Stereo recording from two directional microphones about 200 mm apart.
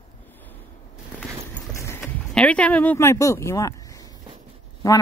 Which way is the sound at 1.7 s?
10° left (ahead or behind).